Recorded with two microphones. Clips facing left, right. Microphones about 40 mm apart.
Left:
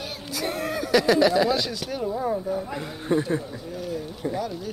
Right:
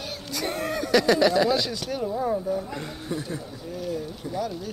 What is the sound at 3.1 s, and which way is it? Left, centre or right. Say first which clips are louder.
Speech: left 9 dB; left.